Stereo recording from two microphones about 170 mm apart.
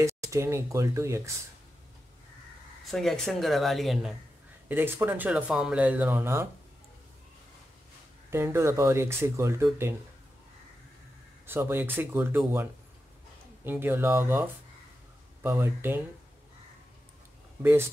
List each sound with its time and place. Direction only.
0.0 s speech: 15° right (ahead or behind)
2.9 s speech: centre (ahead or behind)
4.6 s speech: 15° right (ahead or behind)
8.3 s speech: 15° right (ahead or behind)
11.4 s speech: 15° right (ahead or behind)
13.7 s speech: 15° right (ahead or behind)
17.6 s speech: 15° right (ahead or behind)